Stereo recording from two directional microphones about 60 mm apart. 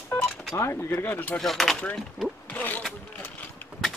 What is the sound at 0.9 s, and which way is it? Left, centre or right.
Speech, left.